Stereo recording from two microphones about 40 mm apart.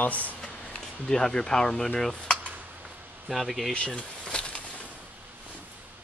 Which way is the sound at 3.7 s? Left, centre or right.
Left.